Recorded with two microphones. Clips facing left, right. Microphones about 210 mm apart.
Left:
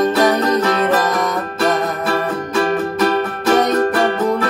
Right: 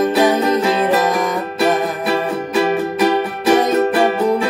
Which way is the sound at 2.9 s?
15° right (ahead or behind).